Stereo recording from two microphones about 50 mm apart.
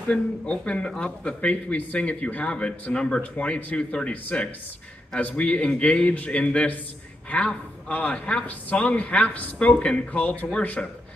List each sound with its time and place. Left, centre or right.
0.1 s a man's voice: left
10.8 s a man's voice: centre